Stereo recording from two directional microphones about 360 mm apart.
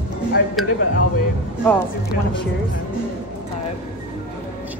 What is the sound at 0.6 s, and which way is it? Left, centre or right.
Speech, centre.